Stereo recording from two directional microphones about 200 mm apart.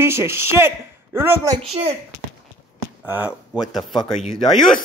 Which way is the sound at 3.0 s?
5° right (ahead or behind).